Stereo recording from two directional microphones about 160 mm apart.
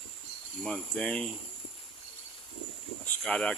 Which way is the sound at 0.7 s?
5° left (ahead or behind).